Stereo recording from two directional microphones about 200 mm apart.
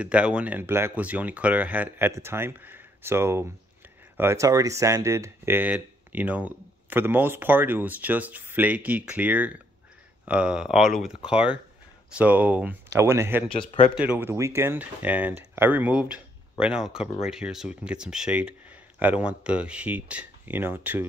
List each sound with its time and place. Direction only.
0.0 s speech: 5° right (ahead or behind)
13.5 s speech: 30° left (ahead or behind)
13.9 s speech: 5° right (ahead or behind)